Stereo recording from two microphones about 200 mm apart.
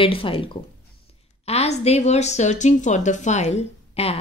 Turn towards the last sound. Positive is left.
turn(degrees=30)  # may be behind; listen again after turning